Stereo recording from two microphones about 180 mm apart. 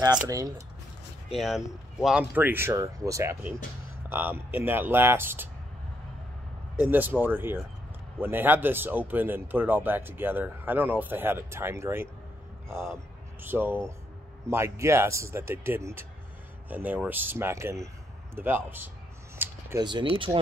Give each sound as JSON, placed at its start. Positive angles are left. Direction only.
{"t": 0.0, "sound": "speech", "side_deg": -20}
{"t": 1.3, "sound": "speech", "side_deg": 0}
{"t": 6.8, "sound": "speech", "side_deg": -10}
{"t": 12.7, "sound": "speech", "side_deg": 0}
{"t": 13.4, "sound": "speech", "side_deg": -10}
{"t": 19.3, "sound": "a sound", "side_deg": -10}
{"t": 19.8, "sound": "speech", "side_deg": -25}